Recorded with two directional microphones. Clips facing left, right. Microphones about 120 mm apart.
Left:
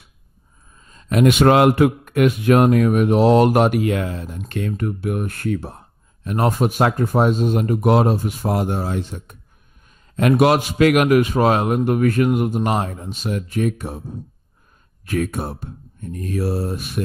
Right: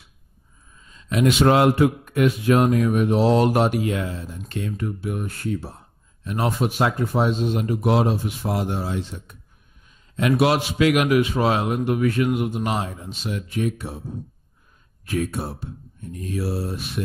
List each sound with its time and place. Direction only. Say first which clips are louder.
0.7 s a man's voice: left 5 dB; 45° left (ahead or behind)
15.0 s a man's voice: left 3 dB; 55° left (ahead or behind)